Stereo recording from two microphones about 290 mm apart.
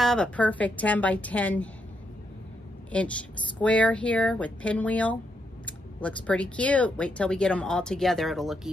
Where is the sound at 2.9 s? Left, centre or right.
Centre.